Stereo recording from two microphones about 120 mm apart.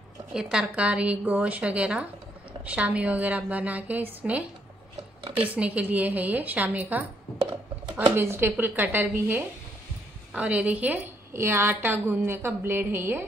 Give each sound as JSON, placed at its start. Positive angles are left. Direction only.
{"t": 0.3, "sound": "a woman's voice", "side_deg": -5}
{"t": 8.2, "sound": "a woman's voice", "side_deg": -20}